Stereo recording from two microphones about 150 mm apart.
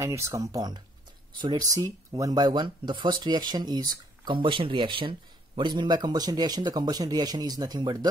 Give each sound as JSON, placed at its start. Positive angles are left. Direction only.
{"t": 0.0, "sound": "speech", "side_deg": -20}